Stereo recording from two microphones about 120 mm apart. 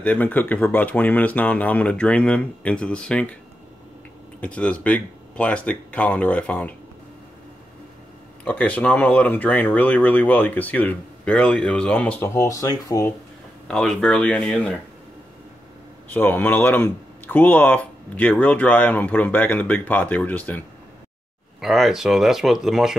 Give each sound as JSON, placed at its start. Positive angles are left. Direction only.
{"t": 0.0, "sound": "speech", "side_deg": 15}
{"t": 4.4, "sound": "speech", "side_deg": 10}
{"t": 8.5, "sound": "speech", "side_deg": 10}
{"t": 12.3, "sound": "speech", "side_deg": 25}
{"t": 13.7, "sound": "speech", "side_deg": 5}
{"t": 16.1, "sound": "speech", "side_deg": 15}
{"t": 21.5, "sound": "speech", "side_deg": -5}